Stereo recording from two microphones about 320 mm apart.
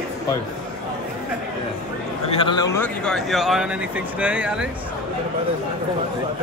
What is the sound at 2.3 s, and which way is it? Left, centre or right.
Speech, centre.